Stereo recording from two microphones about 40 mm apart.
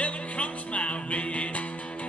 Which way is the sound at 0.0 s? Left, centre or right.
Left.